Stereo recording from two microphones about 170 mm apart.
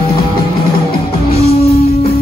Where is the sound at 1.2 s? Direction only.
35° left (ahead or behind).